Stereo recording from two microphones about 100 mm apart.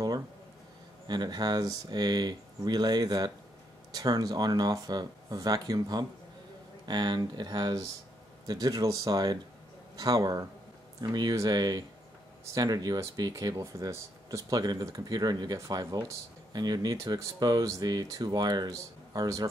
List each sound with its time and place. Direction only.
1.0 s speech: 45° right (ahead or behind)